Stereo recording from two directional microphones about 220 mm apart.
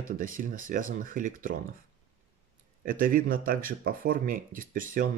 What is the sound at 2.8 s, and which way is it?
Speech, 40° right (ahead or behind).